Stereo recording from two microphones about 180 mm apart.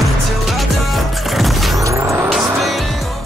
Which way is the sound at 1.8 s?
15° right (ahead or behind).